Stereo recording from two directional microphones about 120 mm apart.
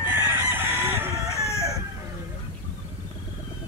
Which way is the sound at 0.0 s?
15° right (ahead or behind).